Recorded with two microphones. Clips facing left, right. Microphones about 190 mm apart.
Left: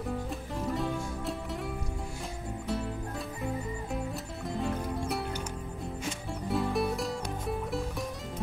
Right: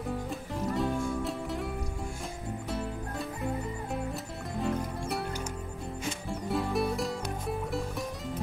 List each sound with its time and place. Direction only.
0.7 s music: centre (ahead or behind)
3.9 s music: centre (ahead or behind)
6.5 s music: centre (ahead or behind)